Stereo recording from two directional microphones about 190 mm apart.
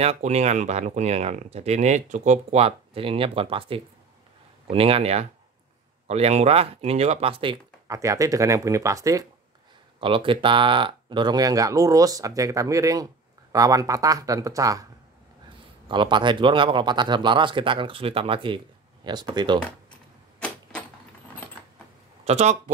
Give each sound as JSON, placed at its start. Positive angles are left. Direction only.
{"t": 0.0, "sound": "speech", "side_deg": -35}
{"t": 7.9, "sound": "speech", "side_deg": -15}
{"t": 9.9, "sound": "speech", "side_deg": -25}
{"t": 15.9, "sound": "speech", "side_deg": -25}
{"t": 20.3, "sound": "a sound", "side_deg": 5}
{"t": 22.2, "sound": "speech", "side_deg": -35}